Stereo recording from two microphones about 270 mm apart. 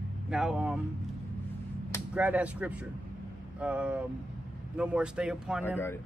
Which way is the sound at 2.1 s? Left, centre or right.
Centre.